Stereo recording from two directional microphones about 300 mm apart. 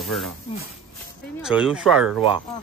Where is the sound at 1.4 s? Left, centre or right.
Centre.